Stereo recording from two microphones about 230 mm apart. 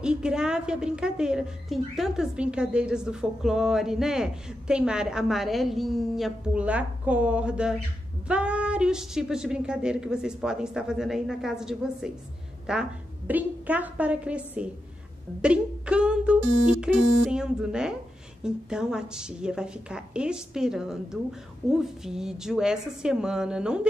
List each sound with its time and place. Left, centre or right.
0.0 s a woman's voice: centre